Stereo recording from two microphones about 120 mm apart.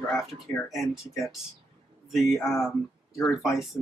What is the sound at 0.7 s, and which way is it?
Speech, centre (ahead or behind).